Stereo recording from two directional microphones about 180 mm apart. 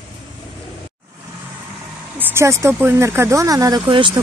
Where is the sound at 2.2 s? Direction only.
15° right (ahead or behind).